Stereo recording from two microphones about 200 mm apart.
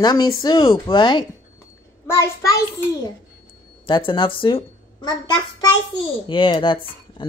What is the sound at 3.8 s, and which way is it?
A child's voice, 25° left (ahead or behind).